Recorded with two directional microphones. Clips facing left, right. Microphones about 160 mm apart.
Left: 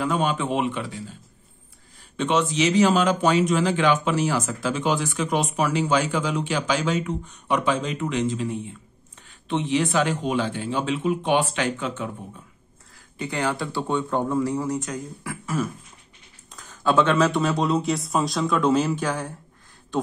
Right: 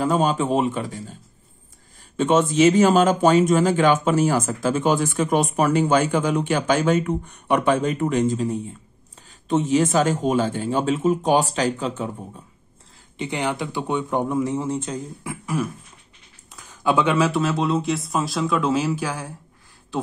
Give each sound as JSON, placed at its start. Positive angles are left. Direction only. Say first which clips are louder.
{"t": 0.0, "sound": "speech", "louder": "right 4 dB", "side_deg": -40}
{"t": 2.1, "sound": "speech", "louder": "right 5 dB", "side_deg": -45}
{"t": 13.2, "sound": "speech", "louder": "right 1 dB", "side_deg": -20}
{"t": 15.4, "sound": "beatboxing", "louder": "right 1 dB", "side_deg": -10}
{"t": 16.5, "sound": "speech", "louder": "even", "side_deg": -10}